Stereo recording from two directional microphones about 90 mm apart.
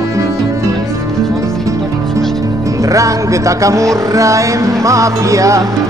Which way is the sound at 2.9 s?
35° right (ahead or behind).